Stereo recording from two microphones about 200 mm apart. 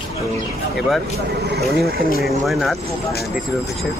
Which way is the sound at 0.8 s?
Centre (ahead or behind).